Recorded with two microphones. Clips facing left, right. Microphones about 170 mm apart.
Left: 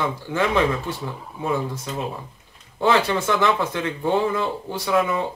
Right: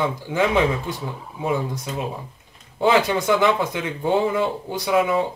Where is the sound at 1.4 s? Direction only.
15° right (ahead or behind).